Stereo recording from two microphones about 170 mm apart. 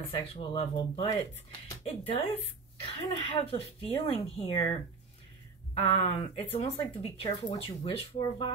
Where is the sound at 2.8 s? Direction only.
30° left (ahead or behind).